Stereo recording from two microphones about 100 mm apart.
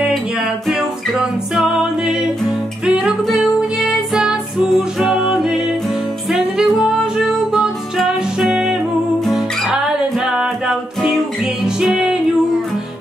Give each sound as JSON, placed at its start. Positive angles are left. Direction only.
{"t": 0.7, "sound": "music", "side_deg": -5}